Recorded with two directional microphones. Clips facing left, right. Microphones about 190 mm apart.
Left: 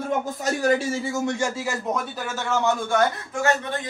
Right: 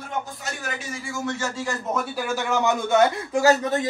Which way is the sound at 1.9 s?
10° right (ahead or behind).